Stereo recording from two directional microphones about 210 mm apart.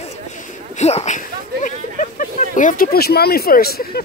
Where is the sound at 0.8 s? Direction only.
30° left (ahead or behind).